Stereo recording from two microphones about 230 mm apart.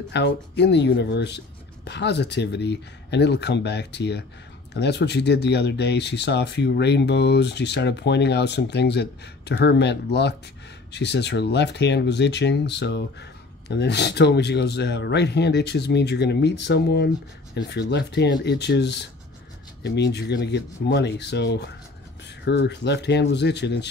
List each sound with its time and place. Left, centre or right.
0.1 s speech: left